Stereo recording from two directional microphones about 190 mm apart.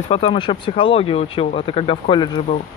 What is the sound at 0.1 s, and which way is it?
Speech, 25° left (ahead or behind).